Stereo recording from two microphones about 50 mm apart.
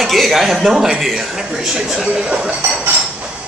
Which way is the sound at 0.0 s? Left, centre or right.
Centre.